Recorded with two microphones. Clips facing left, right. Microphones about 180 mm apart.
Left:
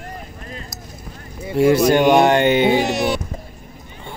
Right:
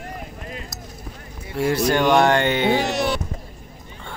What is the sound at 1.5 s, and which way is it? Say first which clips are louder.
Speech: left 6 dB; 20° left (ahead or behind).